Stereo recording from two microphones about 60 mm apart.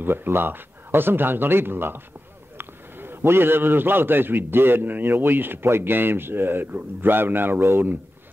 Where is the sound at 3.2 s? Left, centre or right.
Right.